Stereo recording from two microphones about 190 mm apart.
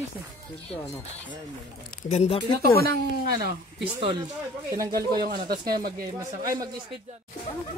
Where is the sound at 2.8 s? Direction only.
55° right (ahead or behind).